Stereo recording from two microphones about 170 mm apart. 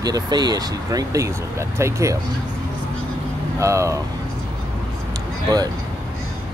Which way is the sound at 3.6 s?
15° right (ahead or behind).